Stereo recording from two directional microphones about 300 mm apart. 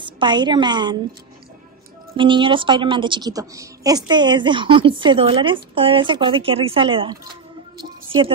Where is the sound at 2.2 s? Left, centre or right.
Centre.